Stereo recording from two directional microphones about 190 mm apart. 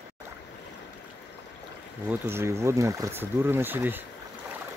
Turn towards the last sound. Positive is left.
turn(degrees=-10)  # may be behind; listen again after turning